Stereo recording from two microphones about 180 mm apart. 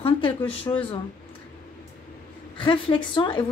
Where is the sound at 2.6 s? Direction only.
25° left (ahead or behind).